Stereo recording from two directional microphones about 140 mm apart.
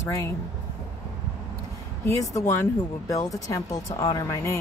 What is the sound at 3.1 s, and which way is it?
Speech, 25° left (ahead or behind).